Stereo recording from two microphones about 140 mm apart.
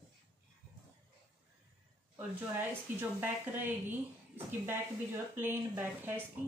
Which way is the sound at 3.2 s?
15° right (ahead or behind).